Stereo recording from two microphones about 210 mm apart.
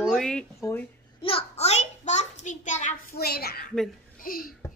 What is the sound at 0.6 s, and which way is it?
Speech, 15° left (ahead or behind).